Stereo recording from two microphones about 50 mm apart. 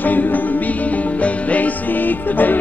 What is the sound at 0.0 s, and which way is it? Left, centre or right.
Music, left.